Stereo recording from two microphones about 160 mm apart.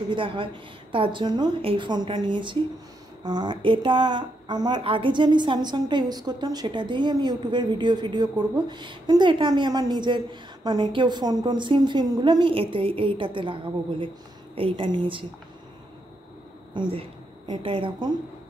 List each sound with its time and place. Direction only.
0.1 s a woman's voice: 30° right (ahead or behind)
16.7 s a woman's voice: 30° right (ahead or behind)